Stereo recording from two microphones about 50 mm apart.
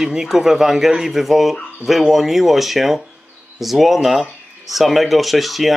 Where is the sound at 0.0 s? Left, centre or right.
Centre.